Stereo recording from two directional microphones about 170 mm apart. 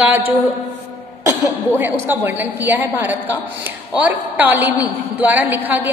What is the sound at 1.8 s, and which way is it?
A woman's voice, 10° right (ahead or behind).